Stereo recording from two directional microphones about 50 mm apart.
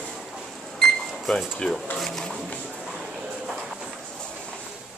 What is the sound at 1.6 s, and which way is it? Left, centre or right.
Speech, centre.